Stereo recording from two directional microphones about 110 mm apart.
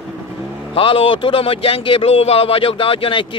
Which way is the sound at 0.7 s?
55° left (ahead or behind).